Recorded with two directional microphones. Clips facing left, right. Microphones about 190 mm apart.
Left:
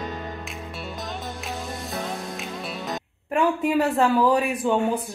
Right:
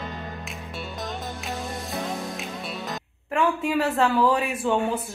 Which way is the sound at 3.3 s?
20° left (ahead or behind).